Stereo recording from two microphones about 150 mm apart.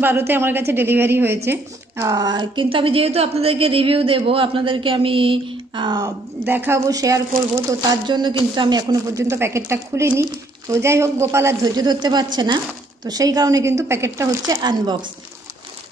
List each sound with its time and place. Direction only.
0.0 s speech: 15° right (ahead or behind); by 6.1 s 30° right (ahead or behind)
6.4 s a woman's voice: 15° right (ahead or behind); by 15.0 s 30° right (ahead or behind)